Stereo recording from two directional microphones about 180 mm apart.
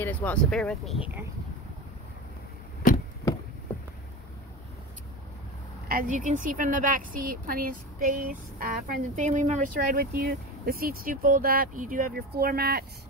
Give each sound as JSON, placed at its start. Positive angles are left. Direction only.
{"t": 0.0, "sound": "speech", "side_deg": 10}
{"t": 5.9, "sound": "speech", "side_deg": -50}